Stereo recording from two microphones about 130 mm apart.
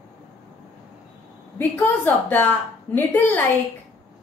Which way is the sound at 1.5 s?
15° left (ahead or behind).